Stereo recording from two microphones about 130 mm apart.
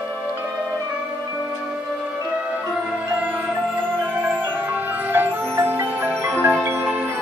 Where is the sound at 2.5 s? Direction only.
15° right (ahead or behind).